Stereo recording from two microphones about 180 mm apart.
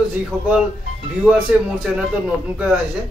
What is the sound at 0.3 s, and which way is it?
Speech, 10° right (ahead or behind).